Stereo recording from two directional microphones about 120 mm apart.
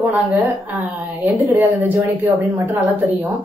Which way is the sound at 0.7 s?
15° right (ahead or behind).